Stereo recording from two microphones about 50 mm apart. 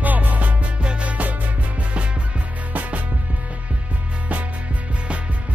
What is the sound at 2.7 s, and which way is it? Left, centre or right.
Music, right.